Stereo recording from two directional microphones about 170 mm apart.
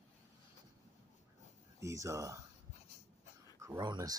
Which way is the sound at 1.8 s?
20° right (ahead or behind).